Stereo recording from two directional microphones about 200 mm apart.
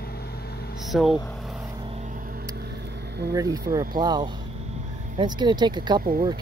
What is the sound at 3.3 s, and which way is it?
Speech, 20° right (ahead or behind).